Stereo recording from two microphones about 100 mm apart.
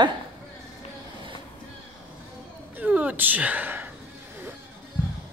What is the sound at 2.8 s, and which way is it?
Speech, 15° right (ahead or behind).